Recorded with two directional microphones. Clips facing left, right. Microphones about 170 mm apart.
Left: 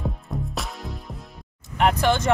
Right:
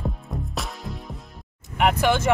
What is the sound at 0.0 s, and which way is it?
Music, centre (ahead or behind).